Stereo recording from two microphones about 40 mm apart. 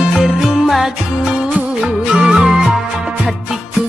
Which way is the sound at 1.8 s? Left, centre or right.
Right.